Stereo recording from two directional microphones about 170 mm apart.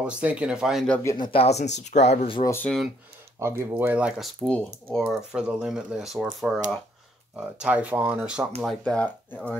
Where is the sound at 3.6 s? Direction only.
10° right (ahead or behind).